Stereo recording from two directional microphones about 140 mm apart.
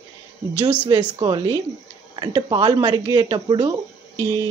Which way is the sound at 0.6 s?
45° right (ahead or behind).